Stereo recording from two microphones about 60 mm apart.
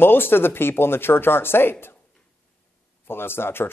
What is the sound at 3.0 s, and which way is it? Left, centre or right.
Speech, left.